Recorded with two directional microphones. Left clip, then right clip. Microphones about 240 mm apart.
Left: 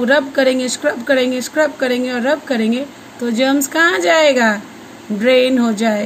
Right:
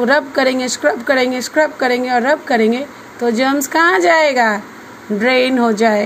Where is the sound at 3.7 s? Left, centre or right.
Centre.